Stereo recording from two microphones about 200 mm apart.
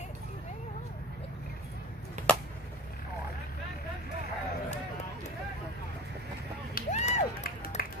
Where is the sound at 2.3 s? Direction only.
5° left (ahead or behind).